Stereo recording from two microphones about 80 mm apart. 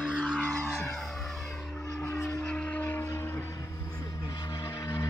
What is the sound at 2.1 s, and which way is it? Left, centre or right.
Vehicle, left.